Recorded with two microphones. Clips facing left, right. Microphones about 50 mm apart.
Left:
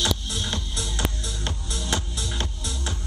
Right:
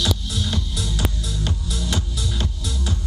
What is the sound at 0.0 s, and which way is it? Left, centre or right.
Music, left.